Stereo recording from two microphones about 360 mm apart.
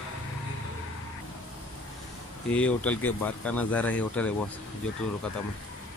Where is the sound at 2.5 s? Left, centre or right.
Centre.